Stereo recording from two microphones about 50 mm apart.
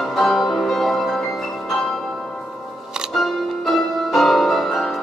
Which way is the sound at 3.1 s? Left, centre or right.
Centre.